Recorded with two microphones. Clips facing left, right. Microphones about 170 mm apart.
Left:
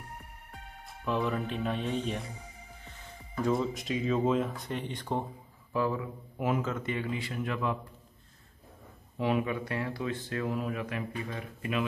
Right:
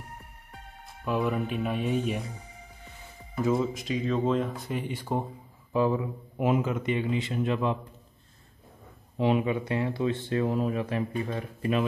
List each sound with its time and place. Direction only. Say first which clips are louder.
0.8 s speech: right 3 dB; 10° right (ahead or behind)
3.3 s speech: right 3 dB; 5° right (ahead or behind)
5.7 s speech: right 5 dB; 20° right (ahead or behind)
9.1 s speech: right 4 dB; 20° right (ahead or behind)